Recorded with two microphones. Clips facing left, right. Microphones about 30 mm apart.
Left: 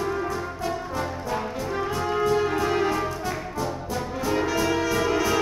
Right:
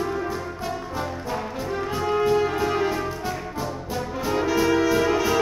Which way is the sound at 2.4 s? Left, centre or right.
Centre.